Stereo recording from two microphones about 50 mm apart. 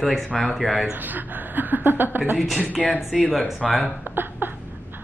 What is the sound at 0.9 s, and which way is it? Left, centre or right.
A woman's voice, right.